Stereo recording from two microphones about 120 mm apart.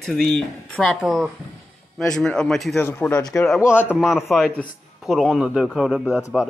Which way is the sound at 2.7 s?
20° left (ahead or behind).